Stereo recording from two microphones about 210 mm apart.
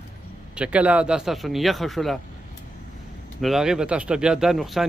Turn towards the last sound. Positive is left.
turn(degrees=0)  # may be behind; listen again after turning